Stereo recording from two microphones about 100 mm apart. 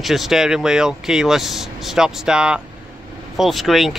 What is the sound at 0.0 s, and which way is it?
Speech, centre (ahead or behind).